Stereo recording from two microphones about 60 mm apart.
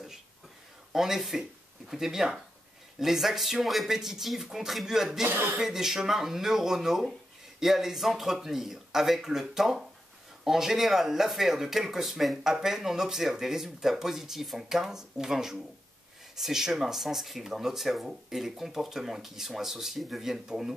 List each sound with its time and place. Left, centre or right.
0.9 s speech: centre
5.3 s speech: right
5.6 s speech: centre